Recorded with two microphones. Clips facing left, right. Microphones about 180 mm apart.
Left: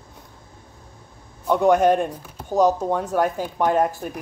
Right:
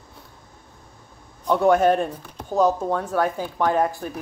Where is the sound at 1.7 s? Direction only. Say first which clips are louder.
Left 1 dB; centre (ahead or behind); by 3.7 s 15° left (ahead or behind).